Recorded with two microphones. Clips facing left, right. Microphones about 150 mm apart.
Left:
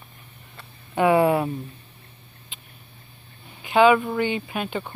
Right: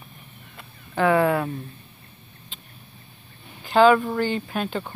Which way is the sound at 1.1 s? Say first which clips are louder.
Left 2 dB; 25° left (ahead or behind).